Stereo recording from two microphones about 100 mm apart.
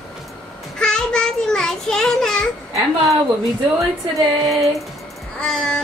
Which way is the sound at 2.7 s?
30° right (ahead or behind).